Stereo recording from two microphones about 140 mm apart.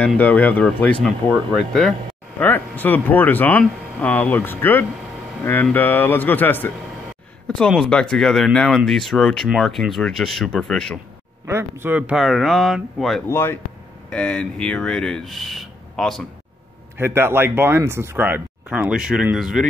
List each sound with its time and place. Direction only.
0.0 s speech: 10° left (ahead or behind)
2.3 s speech: 15° left (ahead or behind)
11.4 s speech: 15° right (ahead or behind); by 13.2 s centre (ahead or behind)
13.3 s speech: 15° left (ahead or behind)
17.0 s speech: 15° right (ahead or behind)